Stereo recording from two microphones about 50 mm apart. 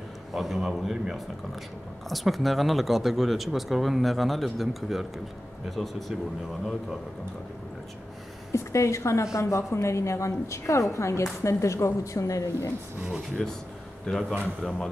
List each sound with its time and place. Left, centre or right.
0.3 s speech: centre
8.5 s a woman's voice: left
13.4 s a man's voice: centre